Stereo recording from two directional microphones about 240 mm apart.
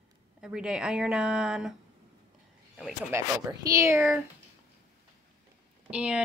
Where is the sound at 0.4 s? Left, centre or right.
Centre.